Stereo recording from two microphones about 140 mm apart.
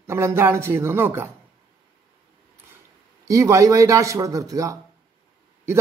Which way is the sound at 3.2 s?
25° right (ahead or behind).